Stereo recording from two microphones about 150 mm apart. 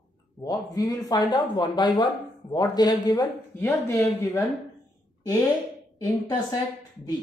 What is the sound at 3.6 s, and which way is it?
Speech, 15° left (ahead or behind).